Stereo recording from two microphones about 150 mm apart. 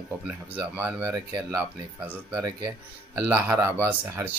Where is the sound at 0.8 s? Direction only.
15° right (ahead or behind).